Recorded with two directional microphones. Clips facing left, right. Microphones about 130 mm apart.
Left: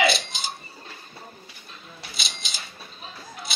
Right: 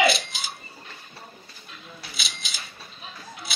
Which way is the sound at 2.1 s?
5° right (ahead or behind).